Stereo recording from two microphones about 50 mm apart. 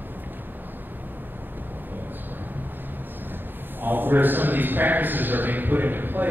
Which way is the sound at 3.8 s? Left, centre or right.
Right.